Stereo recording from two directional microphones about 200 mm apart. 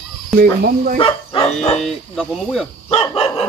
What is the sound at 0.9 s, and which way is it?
Speech, 25° left (ahead or behind).